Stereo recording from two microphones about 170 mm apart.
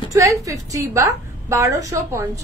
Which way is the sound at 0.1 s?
20° right (ahead or behind).